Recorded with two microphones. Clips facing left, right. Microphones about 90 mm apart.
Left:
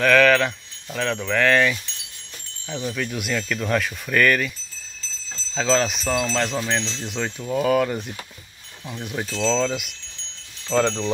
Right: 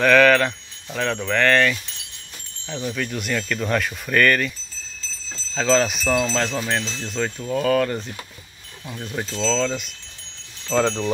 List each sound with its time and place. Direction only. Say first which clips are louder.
0.0 s speech: right 1 dB; centre (ahead or behind)
5.5 s speech: right 2 dB; centre (ahead or behind)
9.4 s speech: left 1 dB; 10° left (ahead or behind)
10.7 s speech: even; 5° right (ahead or behind)